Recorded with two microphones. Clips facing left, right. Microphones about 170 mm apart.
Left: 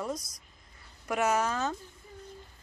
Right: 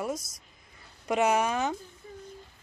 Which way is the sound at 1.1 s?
15° right (ahead or behind).